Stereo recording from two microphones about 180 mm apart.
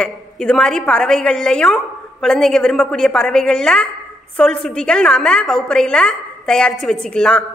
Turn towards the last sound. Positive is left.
turn(degrees=5)  # may be behind; listen again after turning